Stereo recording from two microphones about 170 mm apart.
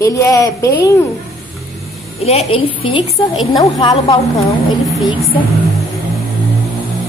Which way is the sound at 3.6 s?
20° left (ahead or behind).